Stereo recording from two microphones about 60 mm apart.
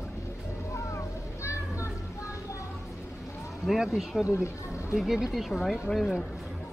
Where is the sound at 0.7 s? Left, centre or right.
Left.